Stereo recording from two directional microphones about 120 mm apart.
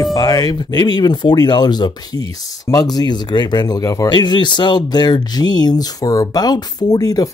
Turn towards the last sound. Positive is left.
turn(degrees=30)  # may be behind; listen again after turning